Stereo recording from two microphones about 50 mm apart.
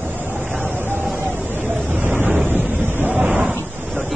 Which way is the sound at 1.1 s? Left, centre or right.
Right.